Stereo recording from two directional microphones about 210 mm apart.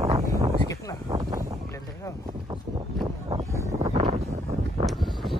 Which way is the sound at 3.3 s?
15° right (ahead or behind).